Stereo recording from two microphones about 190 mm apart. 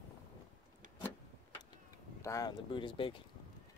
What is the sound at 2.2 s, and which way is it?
Speech, 15° left (ahead or behind).